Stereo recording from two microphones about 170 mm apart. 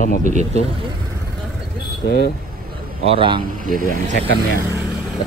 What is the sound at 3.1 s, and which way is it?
Speech, 30° right (ahead or behind).